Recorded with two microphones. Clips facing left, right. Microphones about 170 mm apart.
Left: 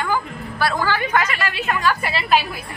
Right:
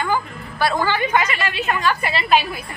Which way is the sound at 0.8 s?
Centre (ahead or behind).